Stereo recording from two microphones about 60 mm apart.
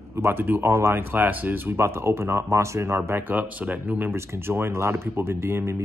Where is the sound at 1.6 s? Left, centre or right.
Right.